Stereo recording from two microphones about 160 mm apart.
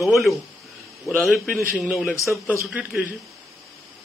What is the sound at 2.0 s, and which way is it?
Speech, 20° left (ahead or behind).